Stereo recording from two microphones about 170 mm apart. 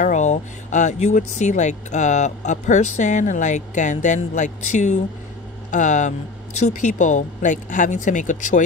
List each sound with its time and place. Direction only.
0.0 s speech: 45° left (ahead or behind)